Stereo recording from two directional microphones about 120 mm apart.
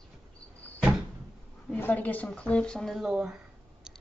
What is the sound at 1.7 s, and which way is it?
A woman's voice, 15° left (ahead or behind).